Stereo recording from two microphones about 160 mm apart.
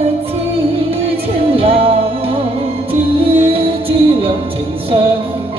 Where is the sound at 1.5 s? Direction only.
35° right (ahead or behind).